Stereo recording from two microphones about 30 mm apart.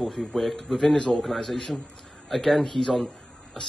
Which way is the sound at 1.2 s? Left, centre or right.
Centre.